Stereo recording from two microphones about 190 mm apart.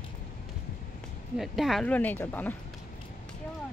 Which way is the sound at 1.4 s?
Centre (ahead or behind).